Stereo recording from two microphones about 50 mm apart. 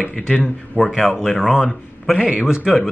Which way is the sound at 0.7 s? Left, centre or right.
Centre.